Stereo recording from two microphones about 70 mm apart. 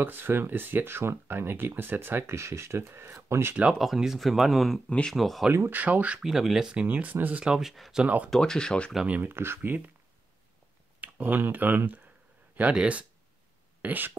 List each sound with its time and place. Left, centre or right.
0.0 s speech: right
3.7 s speech: centre
4.8 s speech: centre
5.1 s speech: centre
5.7 s speech: right
6.1 s speech: centre
6.7 s speech: right
7.4 s speech: centre
8.0 s speech: centre
8.3 s speech: centre
9.0 s speech: right
9.3 s speech: right
11.0 s speech: right